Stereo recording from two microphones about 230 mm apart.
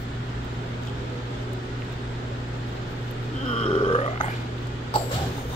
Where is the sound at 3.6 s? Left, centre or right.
Left.